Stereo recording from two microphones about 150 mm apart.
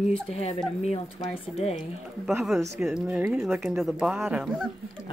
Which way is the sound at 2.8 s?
5° right (ahead or behind).